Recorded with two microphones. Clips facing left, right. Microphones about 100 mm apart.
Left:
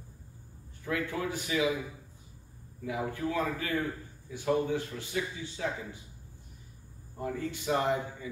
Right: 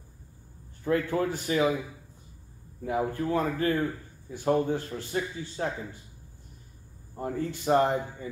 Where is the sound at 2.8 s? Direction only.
45° right (ahead or behind).